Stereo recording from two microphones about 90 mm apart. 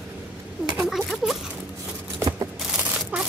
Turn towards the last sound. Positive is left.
turn(degrees=-10)  # may be behind; listen again after turning